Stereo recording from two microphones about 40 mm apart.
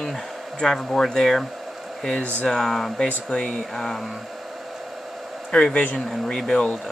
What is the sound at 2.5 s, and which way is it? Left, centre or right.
Speech, centre.